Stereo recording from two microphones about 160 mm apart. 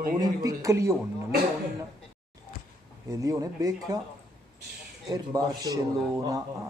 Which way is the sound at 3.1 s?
20° right (ahead or behind).